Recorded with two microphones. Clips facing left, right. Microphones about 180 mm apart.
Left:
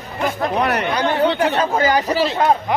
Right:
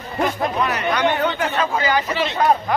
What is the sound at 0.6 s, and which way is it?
Speech, 65° left (ahead or behind).